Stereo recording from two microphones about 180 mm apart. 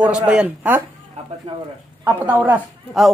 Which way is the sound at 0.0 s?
5° right (ahead or behind).